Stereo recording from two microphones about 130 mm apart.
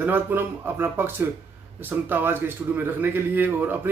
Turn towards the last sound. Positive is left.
turn(degrees=-15)  # may be behind; listen again after turning